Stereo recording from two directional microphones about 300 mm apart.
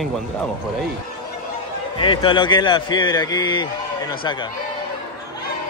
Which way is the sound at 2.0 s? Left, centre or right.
Centre.